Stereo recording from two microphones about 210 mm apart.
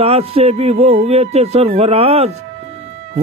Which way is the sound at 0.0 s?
30° right (ahead or behind).